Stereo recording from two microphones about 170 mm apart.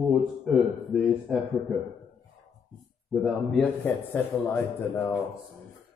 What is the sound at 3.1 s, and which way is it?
A man's voice, 5° left (ahead or behind).